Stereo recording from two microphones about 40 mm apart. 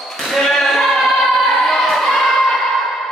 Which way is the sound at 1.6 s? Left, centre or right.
Centre.